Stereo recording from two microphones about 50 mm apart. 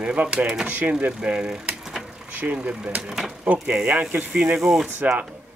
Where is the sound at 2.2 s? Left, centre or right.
Right.